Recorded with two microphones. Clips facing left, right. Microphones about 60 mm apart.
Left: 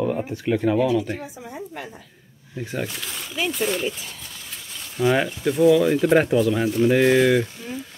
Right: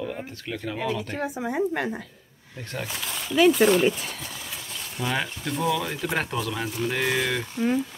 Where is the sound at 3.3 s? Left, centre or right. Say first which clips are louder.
Right 7 dB; right.